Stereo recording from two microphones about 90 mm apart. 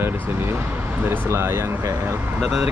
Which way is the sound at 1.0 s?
25° right (ahead or behind).